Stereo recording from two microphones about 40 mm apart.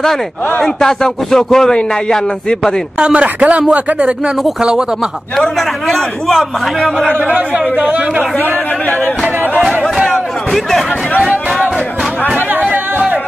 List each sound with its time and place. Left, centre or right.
0.6 s a man's voice: centre
3.0 s speech: right
5.9 s a man's voice: centre
7.2 s speech: right
7.7 s speech: right
10.1 s a sound: centre